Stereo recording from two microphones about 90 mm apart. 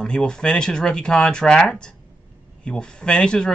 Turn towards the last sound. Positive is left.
turn(degrees=10)  # may be behind; listen again after turning